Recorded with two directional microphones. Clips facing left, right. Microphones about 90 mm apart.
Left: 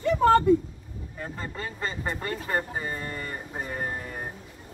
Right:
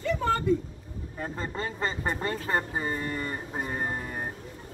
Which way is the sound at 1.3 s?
30° right (ahead or behind).